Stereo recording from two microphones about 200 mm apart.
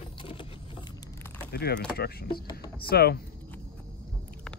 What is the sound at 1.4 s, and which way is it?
Speech, 55° left (ahead or behind).